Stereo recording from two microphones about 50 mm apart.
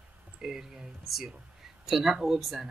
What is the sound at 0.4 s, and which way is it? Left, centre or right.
Speech, centre.